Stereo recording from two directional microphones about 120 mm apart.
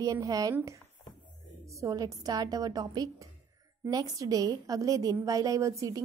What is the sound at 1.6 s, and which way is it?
A woman's voice, 25° right (ahead or behind).